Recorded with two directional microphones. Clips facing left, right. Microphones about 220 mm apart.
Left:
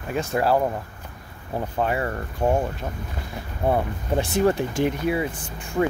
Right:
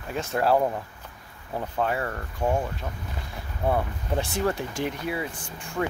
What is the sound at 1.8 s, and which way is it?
Speech, 15° left (ahead or behind).